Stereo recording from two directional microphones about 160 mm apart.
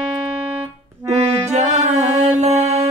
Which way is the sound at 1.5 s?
45° right (ahead or behind).